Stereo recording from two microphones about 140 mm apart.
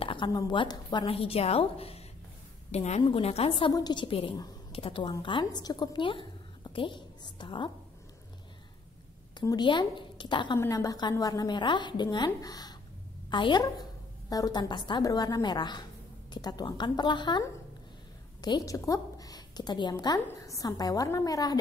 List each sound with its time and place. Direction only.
0.0 s a woman's voice: 35° left (ahead or behind)
1.0 s a woman's voice: 45° left (ahead or behind)
9.4 s a woman's voice: 30° left (ahead or behind)